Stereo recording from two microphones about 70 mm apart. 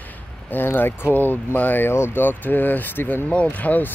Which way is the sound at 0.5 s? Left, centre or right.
Left.